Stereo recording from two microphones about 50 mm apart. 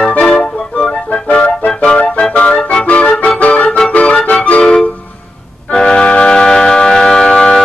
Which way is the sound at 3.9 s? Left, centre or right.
Left.